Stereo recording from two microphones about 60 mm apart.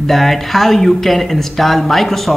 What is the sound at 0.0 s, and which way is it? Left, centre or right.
Speech, centre.